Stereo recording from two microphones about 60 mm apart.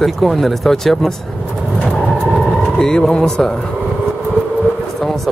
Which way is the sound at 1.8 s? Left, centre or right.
Centre.